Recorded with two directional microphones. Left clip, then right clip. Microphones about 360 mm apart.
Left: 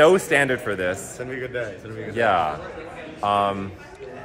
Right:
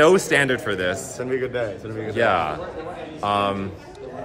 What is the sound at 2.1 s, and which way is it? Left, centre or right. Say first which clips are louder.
A man's voice: even; centre.